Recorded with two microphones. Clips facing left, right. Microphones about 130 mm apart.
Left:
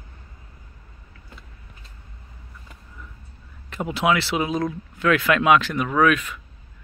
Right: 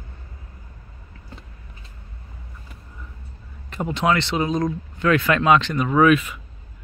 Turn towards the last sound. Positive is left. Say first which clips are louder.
# right 3 dB
turn(degrees=-5)  # may be behind; listen again after turning